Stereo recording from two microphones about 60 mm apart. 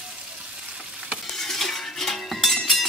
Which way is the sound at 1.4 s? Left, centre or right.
Centre.